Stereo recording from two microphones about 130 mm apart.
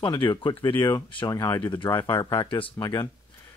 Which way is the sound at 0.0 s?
35° left (ahead or behind).